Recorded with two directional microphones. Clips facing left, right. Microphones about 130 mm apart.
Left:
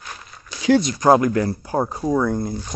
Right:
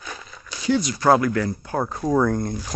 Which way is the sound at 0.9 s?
20° left (ahead or behind).